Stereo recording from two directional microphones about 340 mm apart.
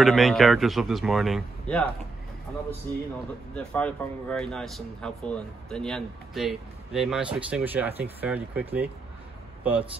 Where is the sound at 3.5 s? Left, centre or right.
Centre.